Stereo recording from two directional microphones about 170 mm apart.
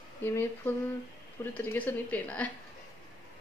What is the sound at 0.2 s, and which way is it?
Speech, 15° left (ahead or behind).